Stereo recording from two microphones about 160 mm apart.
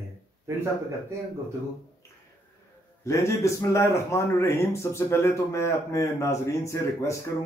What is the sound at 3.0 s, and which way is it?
Speech, 20° left (ahead or behind).